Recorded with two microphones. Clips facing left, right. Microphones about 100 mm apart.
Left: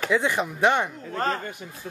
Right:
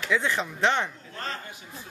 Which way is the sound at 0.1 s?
15° left (ahead or behind).